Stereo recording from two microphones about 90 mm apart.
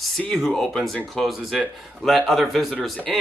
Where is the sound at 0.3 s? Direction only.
5° left (ahead or behind).